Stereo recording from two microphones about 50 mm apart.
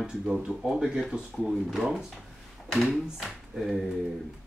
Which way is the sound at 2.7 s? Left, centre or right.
Centre.